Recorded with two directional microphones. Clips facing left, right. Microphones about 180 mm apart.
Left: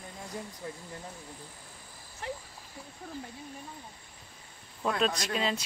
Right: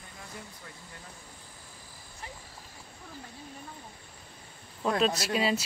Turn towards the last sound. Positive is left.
turn(degrees=-5)  # may be behind; listen again after turning